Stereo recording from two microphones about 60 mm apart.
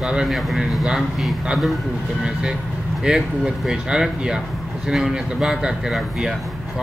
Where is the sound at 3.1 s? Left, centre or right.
Centre.